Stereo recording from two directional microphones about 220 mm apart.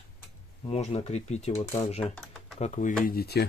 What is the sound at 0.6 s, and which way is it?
Speech, 30° left (ahead or behind).